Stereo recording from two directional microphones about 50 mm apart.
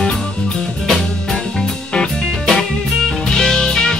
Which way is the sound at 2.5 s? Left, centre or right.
Centre.